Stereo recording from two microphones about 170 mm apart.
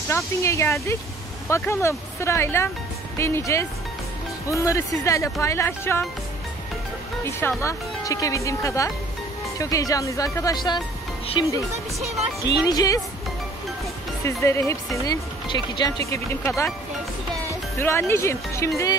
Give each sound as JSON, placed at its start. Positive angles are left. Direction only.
{"t": 0.1, "sound": "speech", "side_deg": 15}
{"t": 7.2, "sound": "speech", "side_deg": 15}
{"t": 12.6, "sound": "speech", "side_deg": 20}
{"t": 14.2, "sound": "speech", "side_deg": 15}
{"t": 16.1, "sound": "speech", "side_deg": 15}